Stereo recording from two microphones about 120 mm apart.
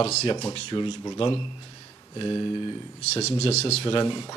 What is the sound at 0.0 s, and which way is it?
Speech, 60° left (ahead or behind).